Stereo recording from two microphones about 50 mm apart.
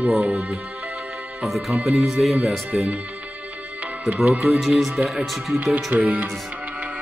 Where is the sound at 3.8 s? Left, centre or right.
Right.